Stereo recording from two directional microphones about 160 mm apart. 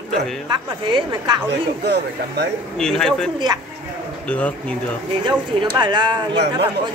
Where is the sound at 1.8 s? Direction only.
90° right.